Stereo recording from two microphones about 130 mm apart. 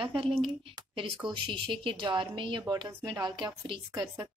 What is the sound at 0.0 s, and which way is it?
Speech, 40° right (ahead or behind).